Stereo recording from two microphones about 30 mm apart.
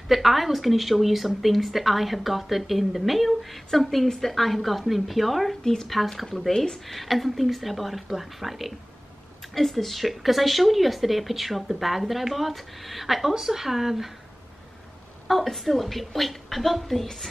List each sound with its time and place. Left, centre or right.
0.1 s speech: centre
5.6 s speech: left
6.9 s speech: centre
9.5 s speech: centre
15.2 s speech: centre